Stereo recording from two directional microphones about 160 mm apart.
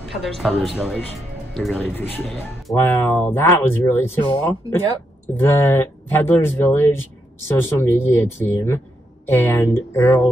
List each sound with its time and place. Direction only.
0.0 s speech: centre (ahead or behind)
1.9 s speech: 15° left (ahead or behind)
5.3 s speech: 15° left (ahead or behind)